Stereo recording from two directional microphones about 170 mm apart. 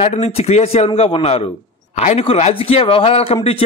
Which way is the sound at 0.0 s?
35° left (ahead or behind).